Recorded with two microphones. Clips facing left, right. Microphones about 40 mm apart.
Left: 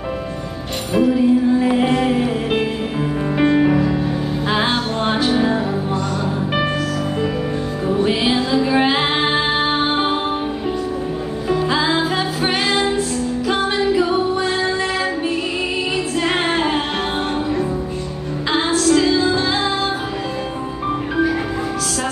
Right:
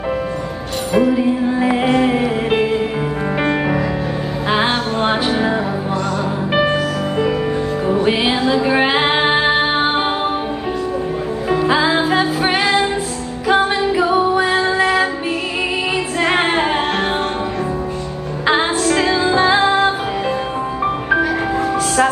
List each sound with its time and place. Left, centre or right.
0.9 s music: centre
7.8 s music: right
11.4 s music: right
16.3 s music: right
18.5 s music: right